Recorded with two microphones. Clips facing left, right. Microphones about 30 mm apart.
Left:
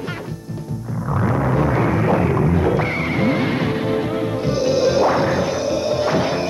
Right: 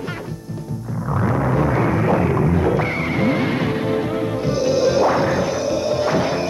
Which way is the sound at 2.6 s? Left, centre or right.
Centre.